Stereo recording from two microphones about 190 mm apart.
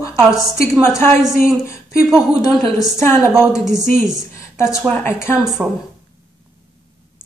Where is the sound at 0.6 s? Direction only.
15° left (ahead or behind).